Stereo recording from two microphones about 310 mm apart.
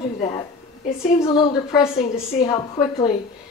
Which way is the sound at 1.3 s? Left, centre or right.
Centre.